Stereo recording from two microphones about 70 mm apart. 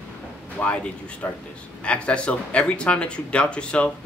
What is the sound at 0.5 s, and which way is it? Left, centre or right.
Speech, centre.